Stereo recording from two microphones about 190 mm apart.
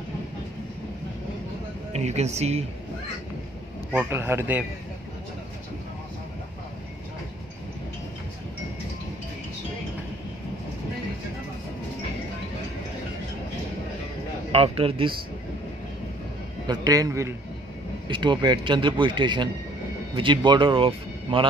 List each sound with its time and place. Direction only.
1.9 s speech: 35° right (ahead or behind)
3.9 s speech: 10° right (ahead or behind)
14.5 s a man's voice: 30° right (ahead or behind)
16.6 s a man's voice: 20° right (ahead or behind)